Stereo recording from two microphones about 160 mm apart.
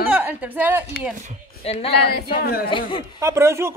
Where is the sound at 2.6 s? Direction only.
30° left (ahead or behind).